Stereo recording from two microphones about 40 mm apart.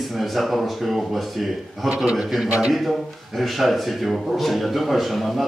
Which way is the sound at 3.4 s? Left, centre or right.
Centre.